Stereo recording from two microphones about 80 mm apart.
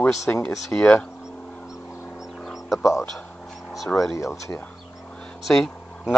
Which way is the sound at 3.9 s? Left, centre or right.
Left.